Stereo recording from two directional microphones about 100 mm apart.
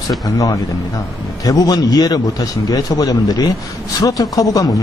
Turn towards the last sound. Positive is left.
turn(degrees=35)  # may be behind; listen again after turning